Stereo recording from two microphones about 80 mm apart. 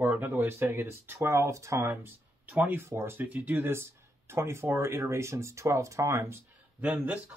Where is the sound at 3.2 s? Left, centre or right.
Centre; by 6.4 s right.